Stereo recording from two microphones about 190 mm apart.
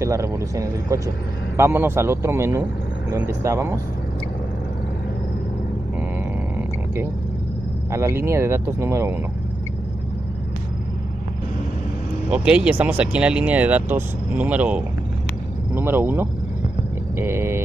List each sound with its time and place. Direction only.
0.0 s speech: 15° right (ahead or behind)
7.9 s speech: 15° right (ahead or behind)
12.3 s speech: 5° right (ahead or behind)